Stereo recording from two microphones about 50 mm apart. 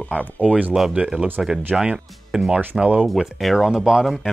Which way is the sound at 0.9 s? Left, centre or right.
Centre.